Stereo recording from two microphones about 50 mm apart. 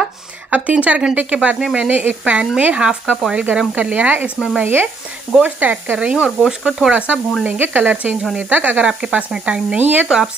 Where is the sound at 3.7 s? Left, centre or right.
Right.